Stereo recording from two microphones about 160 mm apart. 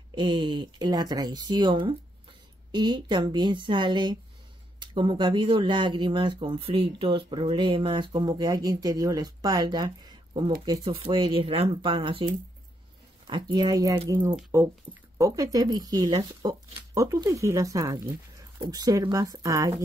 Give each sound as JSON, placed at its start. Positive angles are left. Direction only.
{"t": 0.1, "sound": "speech", "side_deg": -30}
{"t": 13.3, "sound": "speech", "side_deg": -25}